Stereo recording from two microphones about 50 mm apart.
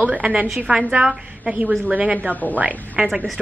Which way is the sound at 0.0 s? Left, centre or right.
Right.